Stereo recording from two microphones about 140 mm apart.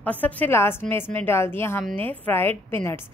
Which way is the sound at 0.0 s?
10° left (ahead or behind).